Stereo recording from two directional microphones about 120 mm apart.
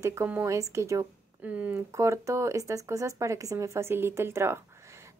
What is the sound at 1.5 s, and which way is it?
Speech, 10° right (ahead or behind).